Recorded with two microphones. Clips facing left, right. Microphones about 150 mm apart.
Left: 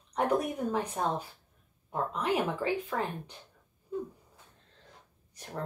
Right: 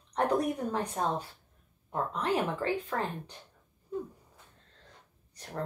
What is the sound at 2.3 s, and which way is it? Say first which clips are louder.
Speech: even; 10° left (ahead or behind).